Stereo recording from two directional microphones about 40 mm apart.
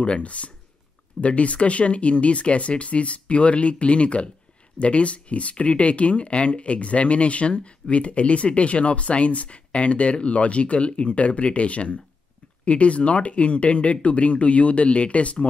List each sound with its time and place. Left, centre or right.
0.0 s speech: left